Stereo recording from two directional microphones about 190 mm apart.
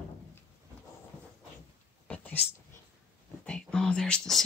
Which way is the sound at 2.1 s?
10° left (ahead or behind).